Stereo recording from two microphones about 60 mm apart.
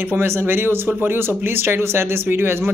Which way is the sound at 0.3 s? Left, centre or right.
Right.